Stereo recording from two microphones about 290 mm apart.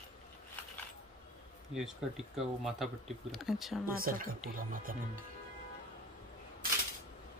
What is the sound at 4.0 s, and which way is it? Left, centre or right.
Speech, right.